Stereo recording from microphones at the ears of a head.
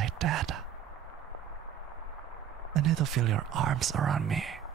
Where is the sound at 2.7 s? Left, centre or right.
Right.